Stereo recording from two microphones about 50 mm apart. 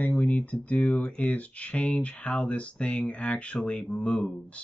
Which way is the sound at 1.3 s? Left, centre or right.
Left.